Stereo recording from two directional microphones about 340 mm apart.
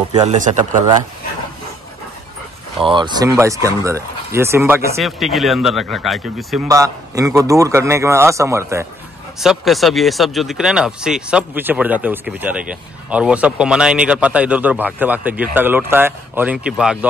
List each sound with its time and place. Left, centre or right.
0.1 s speech: centre
2.8 s speech: centre